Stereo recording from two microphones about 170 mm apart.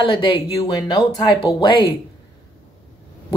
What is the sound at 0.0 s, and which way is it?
Speech, 30° left (ahead or behind).